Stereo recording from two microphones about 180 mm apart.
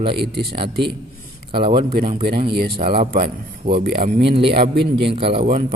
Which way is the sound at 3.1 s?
55° right (ahead or behind).